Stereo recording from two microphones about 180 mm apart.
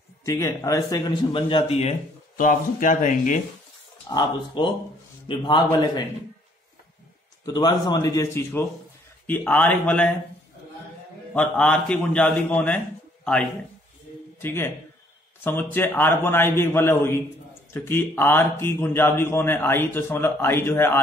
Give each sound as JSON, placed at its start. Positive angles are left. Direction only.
{"t": 0.2, "sound": "speech", "side_deg": 20}
{"t": 2.3, "sound": "speech", "side_deg": 50}
{"t": 4.1, "sound": "speech", "side_deg": 25}
{"t": 7.4, "sound": "a man's voice", "side_deg": 20}
{"t": 11.3, "sound": "a man's voice", "side_deg": 5}